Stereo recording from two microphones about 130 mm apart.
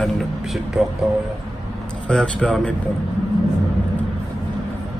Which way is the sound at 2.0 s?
10° left (ahead or behind).